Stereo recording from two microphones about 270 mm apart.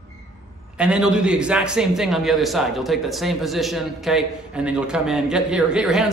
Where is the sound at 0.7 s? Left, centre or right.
Centre.